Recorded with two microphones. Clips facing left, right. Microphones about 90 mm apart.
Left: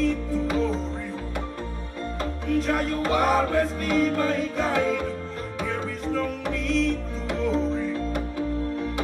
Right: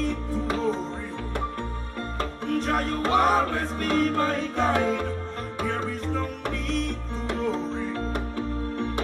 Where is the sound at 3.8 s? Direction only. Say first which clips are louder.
Left 1 dB; 35° right (ahead or behind).